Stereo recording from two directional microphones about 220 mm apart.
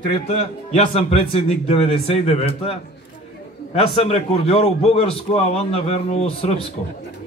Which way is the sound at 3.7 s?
25° left (ahead or behind).